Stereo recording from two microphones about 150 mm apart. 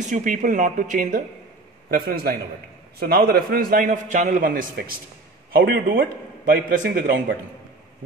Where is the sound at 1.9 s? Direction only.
75° right (ahead or behind).